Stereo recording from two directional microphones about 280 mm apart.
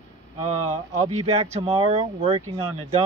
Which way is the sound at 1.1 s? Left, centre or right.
Right.